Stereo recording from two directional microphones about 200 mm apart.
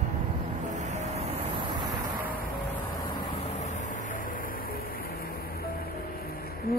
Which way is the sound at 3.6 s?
35° left (ahead or behind).